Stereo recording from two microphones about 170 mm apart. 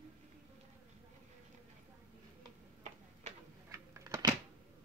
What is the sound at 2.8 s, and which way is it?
Tick-tock, 45° right (ahead or behind).